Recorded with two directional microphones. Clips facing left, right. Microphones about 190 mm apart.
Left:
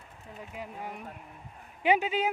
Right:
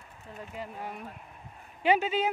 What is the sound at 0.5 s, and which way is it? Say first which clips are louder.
Speech: right 1 dB; 15° left (ahead or behind).